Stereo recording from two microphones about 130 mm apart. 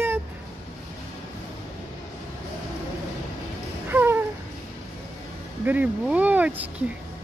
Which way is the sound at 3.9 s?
15° right (ahead or behind).